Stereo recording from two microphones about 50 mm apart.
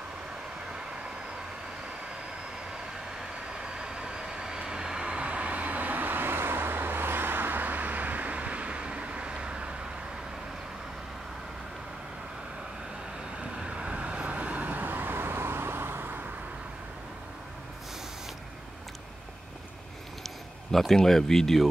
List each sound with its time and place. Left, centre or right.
0.7 s vehicle: centre
3.2 s vehicle: centre
13.4 s vehicle: centre; by 16.2 s right
20.2 s speech: centre